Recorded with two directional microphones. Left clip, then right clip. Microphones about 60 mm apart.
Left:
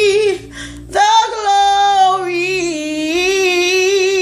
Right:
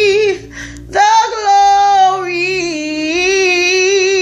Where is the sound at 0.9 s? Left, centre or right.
Left.